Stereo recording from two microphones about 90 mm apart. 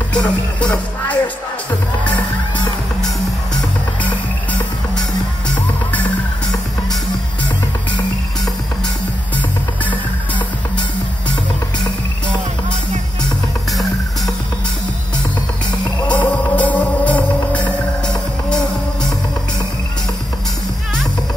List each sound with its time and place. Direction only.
0.1 s music: 10° left (ahead or behind)
13.7 s music: centre (ahead or behind)
16.1 s music: 15° left (ahead or behind)